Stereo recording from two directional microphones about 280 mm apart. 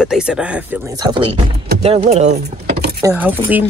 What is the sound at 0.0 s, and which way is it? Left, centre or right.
Speech, centre.